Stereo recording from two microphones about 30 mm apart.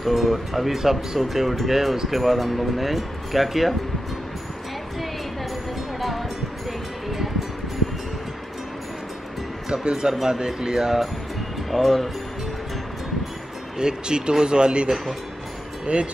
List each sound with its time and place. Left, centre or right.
0.0 s speech: centre
5.9 s music: centre
9.7 s speech: right
11.7 s speech: centre
13.7 s speech: right
15.9 s speech: right